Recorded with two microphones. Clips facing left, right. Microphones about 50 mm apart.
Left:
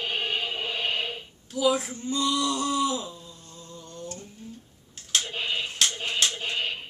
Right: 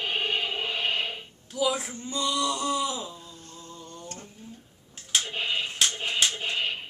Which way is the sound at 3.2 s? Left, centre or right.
Right.